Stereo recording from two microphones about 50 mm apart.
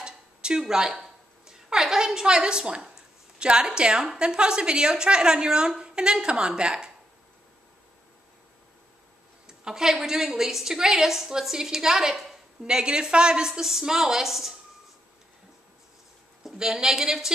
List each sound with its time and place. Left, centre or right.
0.0 s speech: centre
9.5 s a woman's voice: centre
13.5 s a woman's voice: centre
16.4 s a woman's voice: centre